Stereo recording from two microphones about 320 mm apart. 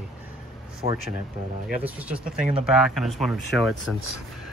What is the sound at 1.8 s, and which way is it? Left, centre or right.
Speech, centre.